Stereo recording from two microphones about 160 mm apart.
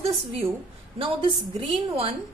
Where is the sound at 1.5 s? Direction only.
35° right (ahead or behind).